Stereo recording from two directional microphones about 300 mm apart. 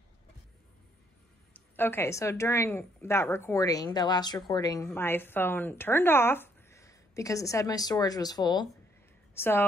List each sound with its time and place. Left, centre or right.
1.5 s speech: centre